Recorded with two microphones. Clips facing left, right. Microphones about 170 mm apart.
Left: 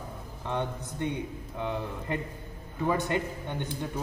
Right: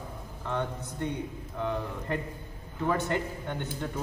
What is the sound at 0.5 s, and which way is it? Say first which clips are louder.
A man's voice: even; 20° left (ahead or behind).